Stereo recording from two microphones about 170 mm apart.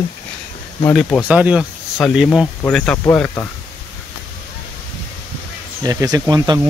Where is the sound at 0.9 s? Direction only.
5° left (ahead or behind).